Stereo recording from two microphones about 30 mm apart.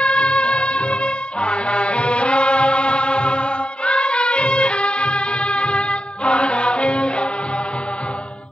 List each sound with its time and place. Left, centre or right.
0.0 s music: left